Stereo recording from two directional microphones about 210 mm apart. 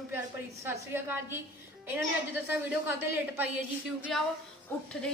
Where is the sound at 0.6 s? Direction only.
10° right (ahead or behind).